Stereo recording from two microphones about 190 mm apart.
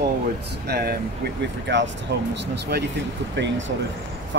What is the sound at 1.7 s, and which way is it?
Speech, 65° right (ahead or behind).